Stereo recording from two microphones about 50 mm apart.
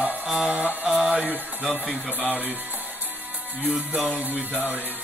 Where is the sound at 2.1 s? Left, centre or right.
Right.